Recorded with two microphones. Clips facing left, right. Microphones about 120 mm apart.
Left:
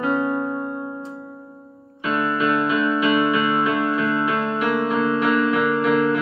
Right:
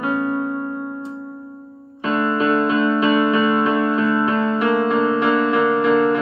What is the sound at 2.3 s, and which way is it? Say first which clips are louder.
Music: right 3 dB; 35° right (ahead or behind).